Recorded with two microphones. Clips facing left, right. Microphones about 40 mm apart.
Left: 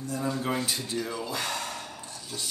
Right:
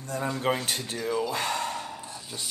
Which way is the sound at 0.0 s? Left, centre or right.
Right.